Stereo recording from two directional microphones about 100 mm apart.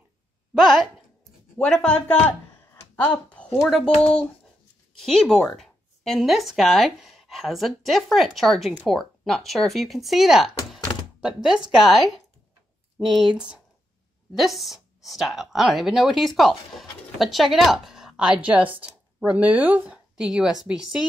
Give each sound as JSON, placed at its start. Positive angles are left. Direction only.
{"t": 0.6, "sound": "speech", "side_deg": -5}
{"t": 1.6, "sound": "speech", "side_deg": 10}
{"t": 2.7, "sound": "a sound", "side_deg": 20}
{"t": 3.6, "sound": "speech", "side_deg": 5}
{"t": 5.0, "sound": "a woman's voice", "side_deg": 5}
{"t": 20.2, "sound": "speech", "side_deg": -5}